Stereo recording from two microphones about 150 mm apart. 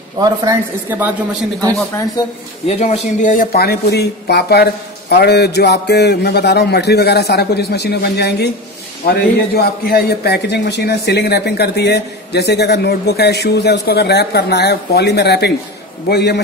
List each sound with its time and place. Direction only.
0.5 s speech: 20° right (ahead or behind)
2.8 s a man's voice: 55° left (ahead or behind); by 16.3 s 90° left